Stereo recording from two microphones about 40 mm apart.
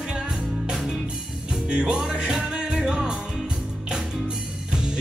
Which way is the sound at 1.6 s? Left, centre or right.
Right.